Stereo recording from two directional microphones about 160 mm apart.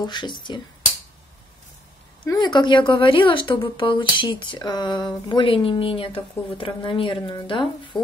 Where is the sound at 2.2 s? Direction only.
25° left (ahead or behind).